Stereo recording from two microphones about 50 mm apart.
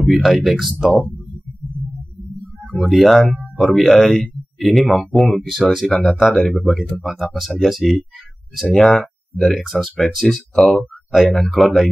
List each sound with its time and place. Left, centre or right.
0.0 s speech: centre
2.9 s speech: centre
10.5 s speech: centre
10.8 s speech: centre